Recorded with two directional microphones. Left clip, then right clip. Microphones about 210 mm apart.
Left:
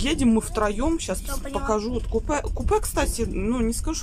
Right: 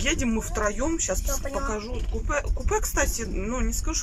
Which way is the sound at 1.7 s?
30° left (ahead or behind).